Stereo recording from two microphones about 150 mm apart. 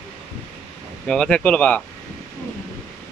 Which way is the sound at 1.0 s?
5° left (ahead or behind).